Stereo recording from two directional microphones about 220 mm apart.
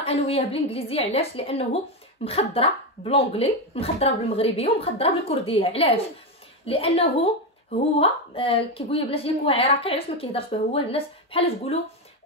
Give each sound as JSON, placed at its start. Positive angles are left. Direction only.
{"t": 0.0, "sound": "a woman's voice", "side_deg": 25}